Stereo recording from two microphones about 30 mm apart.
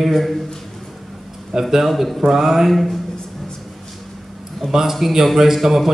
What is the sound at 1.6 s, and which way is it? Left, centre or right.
A man's voice, centre.